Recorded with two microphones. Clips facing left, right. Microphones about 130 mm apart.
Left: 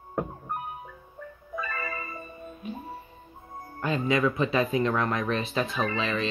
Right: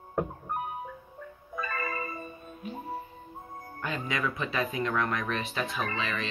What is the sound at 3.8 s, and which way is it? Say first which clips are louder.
Speech: left 7 dB; 25° left (ahead or behind).